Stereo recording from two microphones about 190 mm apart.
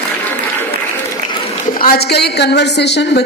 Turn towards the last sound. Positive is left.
turn(degrees=65)  # may be behind; listen again after turning